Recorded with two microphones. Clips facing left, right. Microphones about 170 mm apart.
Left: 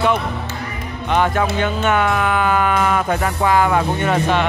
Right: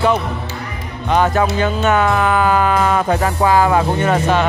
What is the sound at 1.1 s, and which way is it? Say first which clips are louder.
Music: right 3 dB; 40° right (ahead or behind).